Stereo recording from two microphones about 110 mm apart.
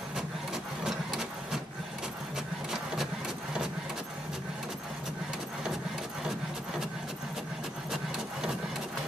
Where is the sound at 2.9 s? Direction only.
5° right (ahead or behind).